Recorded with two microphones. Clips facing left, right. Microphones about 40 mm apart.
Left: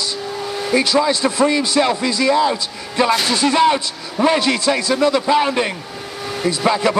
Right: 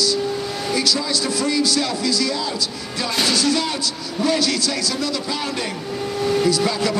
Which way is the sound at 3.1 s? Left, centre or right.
Left.